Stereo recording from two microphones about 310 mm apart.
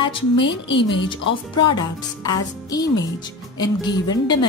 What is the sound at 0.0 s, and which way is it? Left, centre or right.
Speech, centre.